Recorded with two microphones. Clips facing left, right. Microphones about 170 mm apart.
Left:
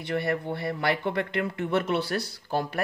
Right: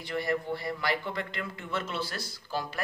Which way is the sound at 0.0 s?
60° left (ahead or behind).